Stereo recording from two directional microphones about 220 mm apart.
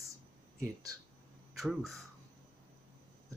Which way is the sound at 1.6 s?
Centre (ahead or behind).